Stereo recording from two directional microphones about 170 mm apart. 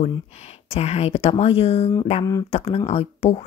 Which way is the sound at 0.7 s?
40° left (ahead or behind).